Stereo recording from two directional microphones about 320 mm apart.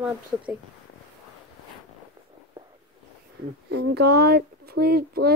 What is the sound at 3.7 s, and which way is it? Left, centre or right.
A woman's voice, right.